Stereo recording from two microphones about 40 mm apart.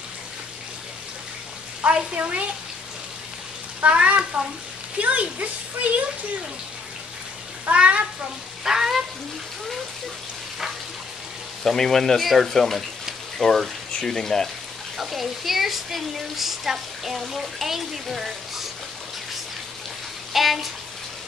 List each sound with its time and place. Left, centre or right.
1.8 s speech: right
3.8 s speech: right
7.7 s speech: right
8.6 s speech: centre
11.6 s speech: centre
15.0 s speech: centre
20.3 s speech: centre